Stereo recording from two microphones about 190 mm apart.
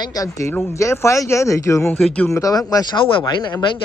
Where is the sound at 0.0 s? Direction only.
20° left (ahead or behind).